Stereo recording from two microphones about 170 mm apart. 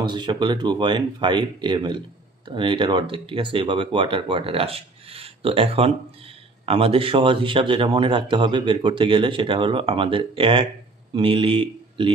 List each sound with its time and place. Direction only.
0.0 s speech: 25° right (ahead or behind)